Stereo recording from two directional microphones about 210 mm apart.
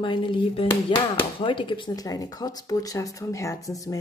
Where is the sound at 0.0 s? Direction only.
25° left (ahead or behind).